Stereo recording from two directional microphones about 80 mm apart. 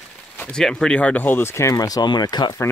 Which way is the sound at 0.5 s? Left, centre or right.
Centre.